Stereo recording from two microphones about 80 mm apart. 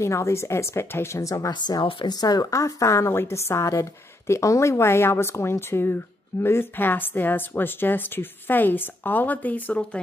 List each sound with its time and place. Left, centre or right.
0.0 s a woman's voice: left
1.5 s speech: left
2.1 s a woman's voice: left; by 9.8 s centre